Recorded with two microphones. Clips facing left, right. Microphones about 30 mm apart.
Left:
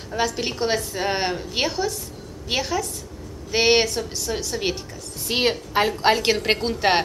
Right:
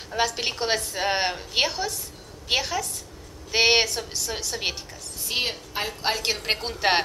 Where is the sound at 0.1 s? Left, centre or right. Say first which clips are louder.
Left 1 dB; centre.